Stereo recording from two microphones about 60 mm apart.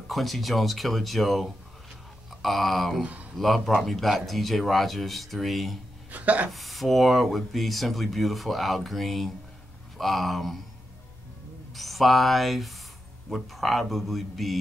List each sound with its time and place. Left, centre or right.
0.1 s speech: centre
3.0 s speech: right
3.3 s speech: centre
6.1 s speech: right
6.5 s speech: centre
11.7 s speech: centre